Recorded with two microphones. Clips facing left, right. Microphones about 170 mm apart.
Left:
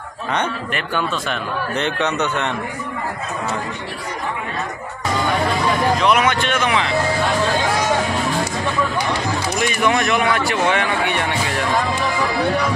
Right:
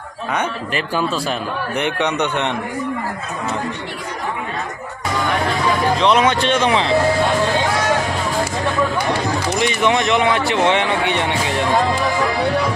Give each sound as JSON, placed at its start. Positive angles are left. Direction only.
{"t": 0.9, "sound": "speech", "side_deg": -35}
{"t": 1.8, "sound": "speech", "side_deg": -15}
{"t": 5.9, "sound": "speech", "side_deg": -30}
{"t": 9.6, "sound": "speech", "side_deg": -20}